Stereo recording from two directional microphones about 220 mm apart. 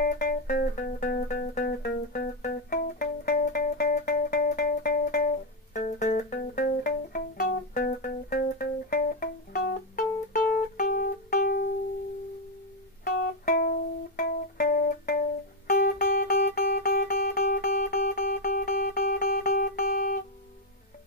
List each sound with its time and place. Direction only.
0.0 s music: 40° left (ahead or behind)
13.0 s music: 45° left (ahead or behind)